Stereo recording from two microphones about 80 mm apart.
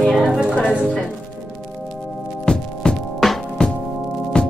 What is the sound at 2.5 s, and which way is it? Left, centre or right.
Music, centre.